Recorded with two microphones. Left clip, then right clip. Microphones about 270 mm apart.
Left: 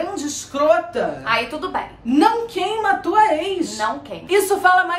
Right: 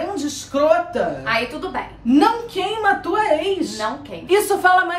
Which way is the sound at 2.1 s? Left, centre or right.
Centre.